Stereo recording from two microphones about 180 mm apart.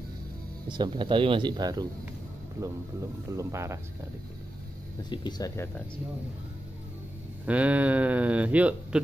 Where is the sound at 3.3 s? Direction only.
15° right (ahead or behind).